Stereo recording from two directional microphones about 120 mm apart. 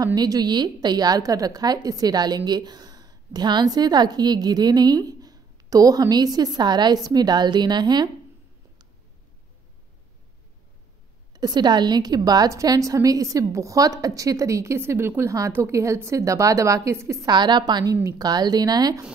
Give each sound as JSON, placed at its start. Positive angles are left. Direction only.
{"t": 0.0, "sound": "a woman's voice", "side_deg": -30}
{"t": 11.3, "sound": "a woman's voice", "side_deg": -35}
{"t": 17.3, "sound": "a woman's voice", "side_deg": -40}